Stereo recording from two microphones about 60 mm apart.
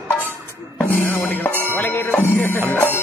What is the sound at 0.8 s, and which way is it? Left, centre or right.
Music, left.